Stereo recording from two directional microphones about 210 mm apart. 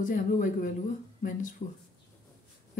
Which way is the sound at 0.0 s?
40° left (ahead or behind).